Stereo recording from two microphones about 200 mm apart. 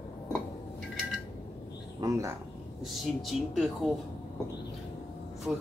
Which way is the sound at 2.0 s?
15° right (ahead or behind).